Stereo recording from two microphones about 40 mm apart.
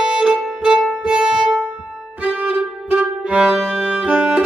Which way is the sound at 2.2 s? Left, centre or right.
Right.